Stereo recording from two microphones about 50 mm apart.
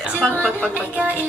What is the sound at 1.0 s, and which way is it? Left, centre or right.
Music, right.